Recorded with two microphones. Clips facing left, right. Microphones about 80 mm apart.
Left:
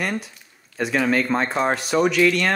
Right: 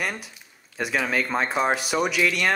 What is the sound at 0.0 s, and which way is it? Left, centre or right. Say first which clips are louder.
Speech: left 4 dB; centre.